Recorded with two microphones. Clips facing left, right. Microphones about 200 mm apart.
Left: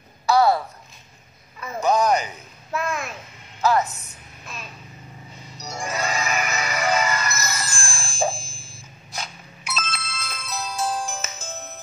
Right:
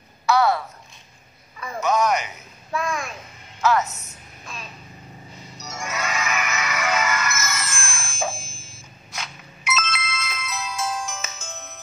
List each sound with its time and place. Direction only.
0.3 s a sound: 35° left (ahead or behind)
1.8 s speech: 35° left (ahead or behind)
2.7 s a child's voice: 5° left (ahead or behind)
3.6 s speech: 35° left (ahead or behind)
5.6 s music: 35° left (ahead or behind)